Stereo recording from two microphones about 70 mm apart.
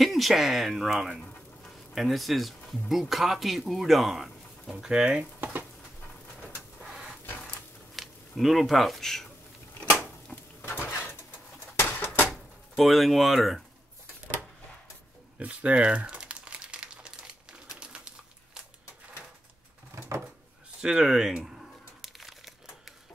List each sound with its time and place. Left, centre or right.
0.0 s speech: centre
1.6 s a sound: centre
2.9 s speech: centre
5.4 s frying: right
6.8 s printer: centre
7.2 s printer: left
7.9 s speech: centre
10.6 s a sound: left
12.3 s speech: centre
15.3 s crumpling: centre
20.8 s crumpling: centre